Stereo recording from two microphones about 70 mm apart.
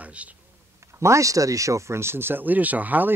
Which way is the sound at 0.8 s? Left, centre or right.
Right.